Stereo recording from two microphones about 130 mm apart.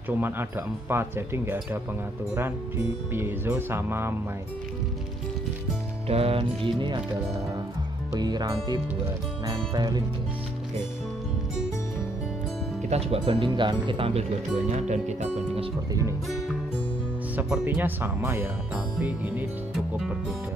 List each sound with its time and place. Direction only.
0.1 s speech: 15° right (ahead or behind)
3.1 s speech: 15° right (ahead or behind)
6.0 s speech: 50° right (ahead or behind)
8.1 s speech: 30° right (ahead or behind)
12.9 s speech: 50° right (ahead or behind)
14.7 s speech: 60° right (ahead or behind)
15.9 s speech: 25° right (ahead or behind)
17.4 s speech: 15° right (ahead or behind)
19.7 s music: centre (ahead or behind)